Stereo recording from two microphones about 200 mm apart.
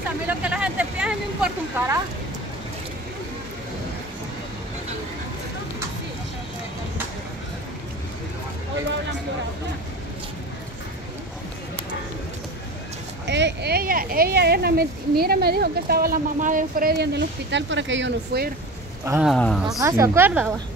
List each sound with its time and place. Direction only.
0.3 s a sound: 5° right (ahead or behind)
1.8 s a woman's voice: 10° right (ahead or behind)
13.3 s speech: 60° right (ahead or behind)
19.0 s a woman's voice: 10° right (ahead or behind)
19.3 s speech: 5° left (ahead or behind)
19.8 s a woman's voice: 15° right (ahead or behind)